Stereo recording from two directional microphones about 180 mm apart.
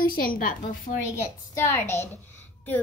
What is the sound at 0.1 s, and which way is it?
Speech, 50° left (ahead or behind).